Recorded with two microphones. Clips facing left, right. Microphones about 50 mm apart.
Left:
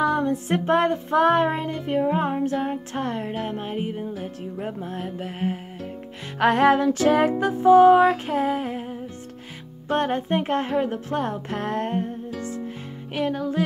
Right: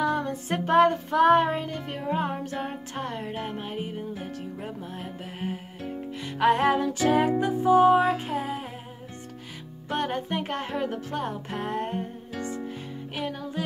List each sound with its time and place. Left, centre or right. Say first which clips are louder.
0.0 s music: left 5 dB; left
3.0 s music: left 3 dB; left
4.9 s music: left 6 dB; left
6.4 s music: left 4 dB; left
8.3 s humming: left 7 dB; left
9.8 s music: left 5 dB; left
12.4 s music: right 2 dB; right
13.2 s music: left 8 dB; left